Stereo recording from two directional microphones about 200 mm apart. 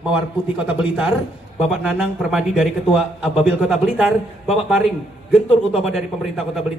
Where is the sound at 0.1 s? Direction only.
5° right (ahead or behind).